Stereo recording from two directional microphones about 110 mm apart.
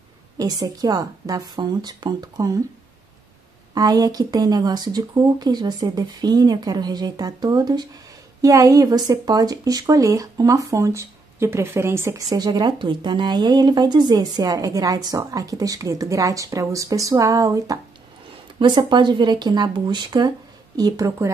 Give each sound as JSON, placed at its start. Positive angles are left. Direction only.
{"t": 0.4, "sound": "a woman's voice", "side_deg": -35}
{"t": 3.7, "sound": "a woman's voice", "side_deg": -35}
{"t": 12.3, "sound": "a woman's voice", "side_deg": -40}
{"t": 18.6, "sound": "a woman's voice", "side_deg": -45}